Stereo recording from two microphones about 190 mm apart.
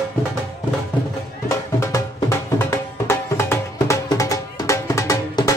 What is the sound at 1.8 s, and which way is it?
Music, 15° left (ahead or behind).